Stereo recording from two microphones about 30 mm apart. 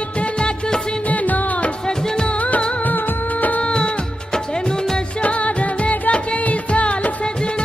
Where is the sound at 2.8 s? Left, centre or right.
Left.